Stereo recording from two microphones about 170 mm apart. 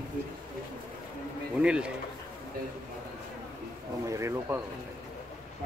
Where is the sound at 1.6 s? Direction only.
5° right (ahead or behind).